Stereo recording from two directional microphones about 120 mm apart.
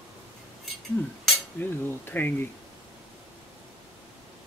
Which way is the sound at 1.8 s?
15° left (ahead or behind).